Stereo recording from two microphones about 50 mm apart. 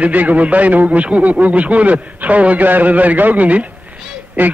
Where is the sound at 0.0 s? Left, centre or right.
Right.